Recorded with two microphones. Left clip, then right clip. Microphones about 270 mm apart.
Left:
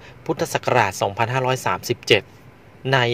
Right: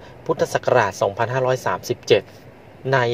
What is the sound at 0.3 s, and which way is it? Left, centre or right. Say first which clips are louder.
Speech: right 2 dB; left.